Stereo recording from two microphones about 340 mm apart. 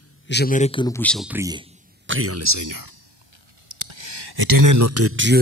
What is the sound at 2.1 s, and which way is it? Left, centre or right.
Speech, right.